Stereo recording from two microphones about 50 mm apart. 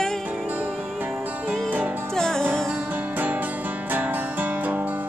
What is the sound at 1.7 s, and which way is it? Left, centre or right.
Music, right.